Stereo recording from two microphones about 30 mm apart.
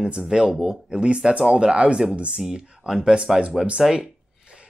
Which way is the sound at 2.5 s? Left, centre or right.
Right.